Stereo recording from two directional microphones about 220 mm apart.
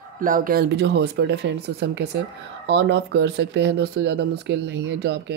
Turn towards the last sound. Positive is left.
turn(degrees=-50)  # may be behind; listen again after turning